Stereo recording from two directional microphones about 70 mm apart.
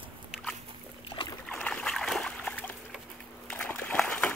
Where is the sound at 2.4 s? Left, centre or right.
Left.